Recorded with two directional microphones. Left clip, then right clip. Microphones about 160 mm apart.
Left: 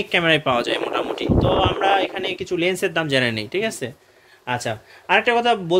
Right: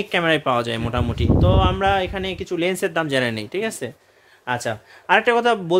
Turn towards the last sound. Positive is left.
turn(degrees=-35)  # may be behind; listen again after turning